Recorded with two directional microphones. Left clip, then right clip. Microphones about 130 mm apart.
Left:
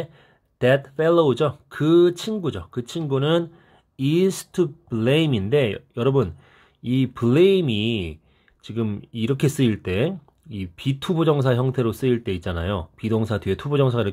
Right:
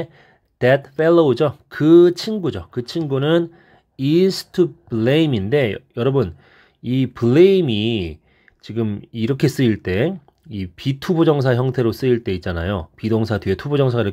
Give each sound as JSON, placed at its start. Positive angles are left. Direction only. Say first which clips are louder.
{"t": 0.6, "sound": "speech", "louder": "right 3 dB", "side_deg": -30}